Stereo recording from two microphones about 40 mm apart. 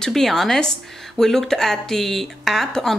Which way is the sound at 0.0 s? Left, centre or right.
Centre.